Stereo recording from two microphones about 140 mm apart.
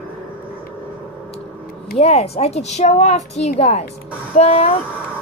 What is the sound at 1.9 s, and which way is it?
Speech, 45° left (ahead or behind).